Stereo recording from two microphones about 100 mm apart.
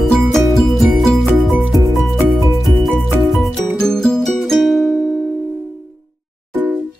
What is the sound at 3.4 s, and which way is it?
Music, 5° left (ahead or behind).